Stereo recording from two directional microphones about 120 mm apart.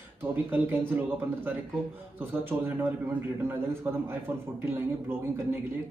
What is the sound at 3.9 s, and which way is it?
Speech, 20° right (ahead or behind).